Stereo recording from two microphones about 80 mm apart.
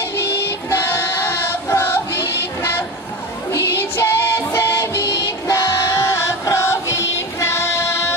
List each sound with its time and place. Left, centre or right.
0.2 s music: left
3.5 s music: left
5.0 s music: left